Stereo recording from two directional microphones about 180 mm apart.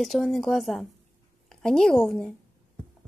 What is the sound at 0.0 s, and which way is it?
Speech, centre (ahead or behind).